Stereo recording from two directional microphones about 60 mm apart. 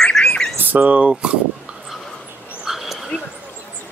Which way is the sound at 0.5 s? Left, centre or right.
Right.